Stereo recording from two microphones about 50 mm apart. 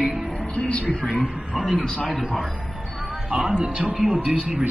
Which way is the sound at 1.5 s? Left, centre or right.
Centre.